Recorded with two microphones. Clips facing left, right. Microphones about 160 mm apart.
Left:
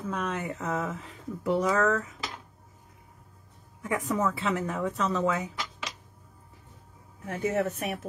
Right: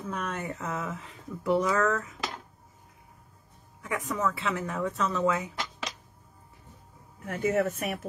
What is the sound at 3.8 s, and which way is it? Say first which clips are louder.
Speech: left 2 dB; 25° left (ahead or behind).